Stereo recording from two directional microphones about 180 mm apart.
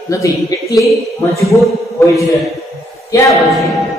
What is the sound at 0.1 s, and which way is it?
Speech, 20° left (ahead or behind).